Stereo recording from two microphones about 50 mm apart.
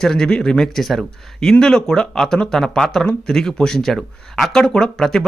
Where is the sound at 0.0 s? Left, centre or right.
Centre.